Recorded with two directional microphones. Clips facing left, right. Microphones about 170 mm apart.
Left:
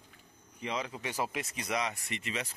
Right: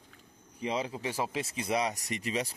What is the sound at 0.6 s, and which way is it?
Speech, 30° right (ahead or behind).